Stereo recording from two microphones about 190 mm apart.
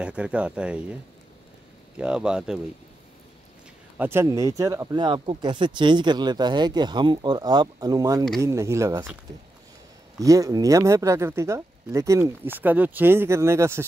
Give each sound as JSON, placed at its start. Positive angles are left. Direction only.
{"t": 0.0, "sound": "speech", "side_deg": -5}
{"t": 2.0, "sound": "speech", "side_deg": -5}
{"t": 4.0, "sound": "speech", "side_deg": -15}
{"t": 10.1, "sound": "speech", "side_deg": -15}